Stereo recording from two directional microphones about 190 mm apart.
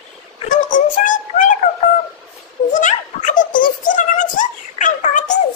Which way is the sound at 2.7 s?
40° left (ahead or behind).